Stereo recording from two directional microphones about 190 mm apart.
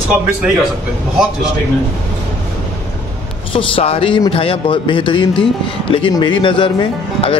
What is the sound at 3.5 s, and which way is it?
Speech, 30° left (ahead or behind).